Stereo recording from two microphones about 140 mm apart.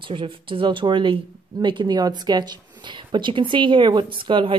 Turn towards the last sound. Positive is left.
turn(degrees=-35)  # may be behind; listen again after turning